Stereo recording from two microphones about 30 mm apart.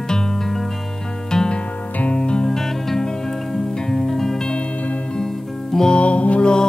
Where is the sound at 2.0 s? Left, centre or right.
Left.